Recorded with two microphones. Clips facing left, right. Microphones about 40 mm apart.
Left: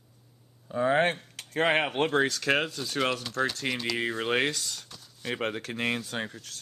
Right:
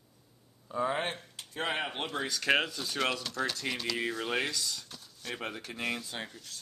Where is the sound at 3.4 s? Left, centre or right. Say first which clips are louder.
Left 4 dB; centre; by 4.8 s left.